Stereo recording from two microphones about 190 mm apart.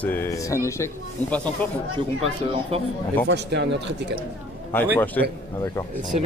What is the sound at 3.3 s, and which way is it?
Speech, 65° right (ahead or behind).